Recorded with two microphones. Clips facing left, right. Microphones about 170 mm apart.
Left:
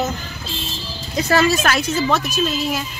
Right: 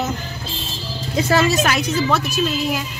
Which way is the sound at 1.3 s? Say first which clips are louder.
Left 1 dB; 20° right (ahead or behind).